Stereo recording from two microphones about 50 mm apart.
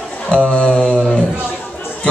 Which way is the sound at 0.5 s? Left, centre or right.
Left.